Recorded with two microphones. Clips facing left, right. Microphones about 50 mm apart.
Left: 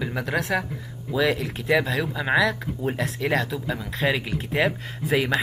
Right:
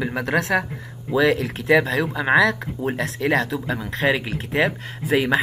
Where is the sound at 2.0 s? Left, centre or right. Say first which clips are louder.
Right 4 dB; right.